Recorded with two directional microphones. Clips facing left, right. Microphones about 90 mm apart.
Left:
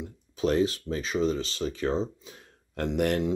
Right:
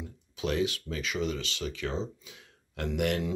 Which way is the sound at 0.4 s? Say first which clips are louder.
Left 5 dB; 40° left (ahead or behind).